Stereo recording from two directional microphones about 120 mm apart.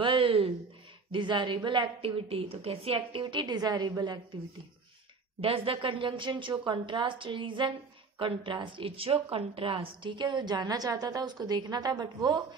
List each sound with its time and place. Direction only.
0.0 s a sound: 45° right (ahead or behind)
1.1 s a woman's voice: 40° right (ahead or behind)
5.4 s a woman's voice: 50° right (ahead or behind); by 12.4 s 35° right (ahead or behind)